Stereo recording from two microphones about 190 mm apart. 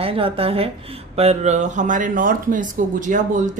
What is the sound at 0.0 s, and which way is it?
A woman's voice, 30° right (ahead or behind).